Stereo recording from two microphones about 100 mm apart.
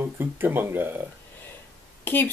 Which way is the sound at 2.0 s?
20° left (ahead or behind).